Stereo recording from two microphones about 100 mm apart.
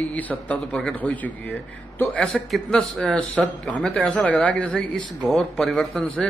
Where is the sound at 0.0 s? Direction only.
15° left (ahead or behind).